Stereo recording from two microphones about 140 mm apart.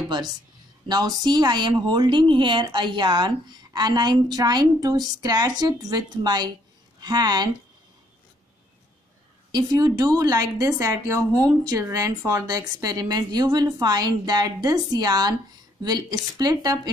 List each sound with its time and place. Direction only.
0.8 s a woman's voice: 30° right (ahead or behind)
9.5 s a woman's voice: 25° right (ahead or behind)